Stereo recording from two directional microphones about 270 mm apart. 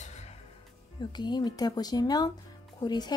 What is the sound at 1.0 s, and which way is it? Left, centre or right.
Speech, centre.